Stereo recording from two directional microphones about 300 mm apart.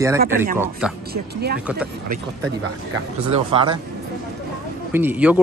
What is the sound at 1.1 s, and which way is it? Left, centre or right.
Speech, right.